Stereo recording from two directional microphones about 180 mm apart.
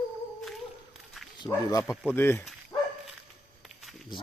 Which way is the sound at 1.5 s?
15° left (ahead or behind).